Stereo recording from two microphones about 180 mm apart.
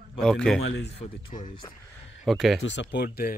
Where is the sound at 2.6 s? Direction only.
80° left; by 3.3 s 60° left (ahead or behind).